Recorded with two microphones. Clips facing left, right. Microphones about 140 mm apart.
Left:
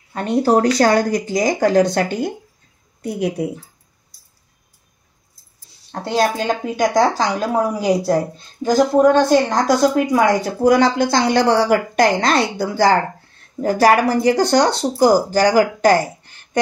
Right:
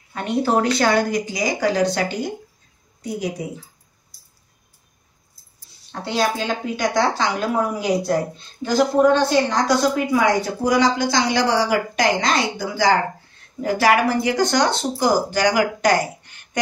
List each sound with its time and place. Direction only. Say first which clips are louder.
0.1 s a woman's voice: left 4 dB; 35° left (ahead or behind); by 3.4 s 60° left (ahead or behind)
5.9 s a woman's voice: left 3 dB; 45° left (ahead or behind)
13.6 s a woman's voice: left 4 dB; 45° left (ahead or behind)
16.2 s a sound: left 1 dB; 35° left (ahead or behind)